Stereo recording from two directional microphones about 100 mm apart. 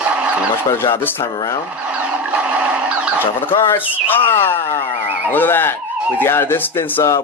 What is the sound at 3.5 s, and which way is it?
Speech, 20° left (ahead or behind).